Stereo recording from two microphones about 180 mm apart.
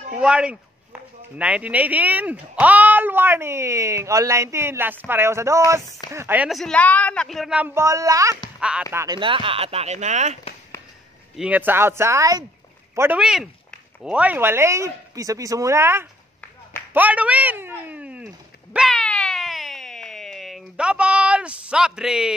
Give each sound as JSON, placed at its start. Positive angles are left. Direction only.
{"t": 0.2, "sound": "speech", "side_deg": -5}
{"t": 8.5, "sound": "speech", "side_deg": -5}
{"t": 8.9, "sound": "speech", "side_deg": -20}
{"t": 11.3, "sound": "speech", "side_deg": -5}
{"t": 16.9, "sound": "a sound", "side_deg": -10}